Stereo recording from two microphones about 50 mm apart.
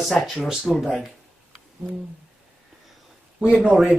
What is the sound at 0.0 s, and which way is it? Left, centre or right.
Speech, centre.